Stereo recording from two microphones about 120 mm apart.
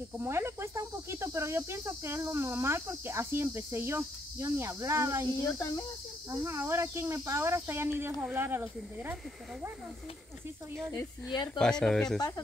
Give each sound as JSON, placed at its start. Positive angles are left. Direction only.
{"t": 0.2, "sound": "speech", "side_deg": -20}
{"t": 5.3, "sound": "speech", "side_deg": 30}
{"t": 6.3, "sound": "speech", "side_deg": -25}
{"t": 11.5, "sound": "speech", "side_deg": 5}